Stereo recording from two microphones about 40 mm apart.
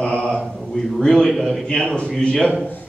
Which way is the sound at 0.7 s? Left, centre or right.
Centre.